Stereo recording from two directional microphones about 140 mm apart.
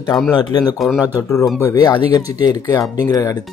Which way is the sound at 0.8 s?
Centre (ahead or behind).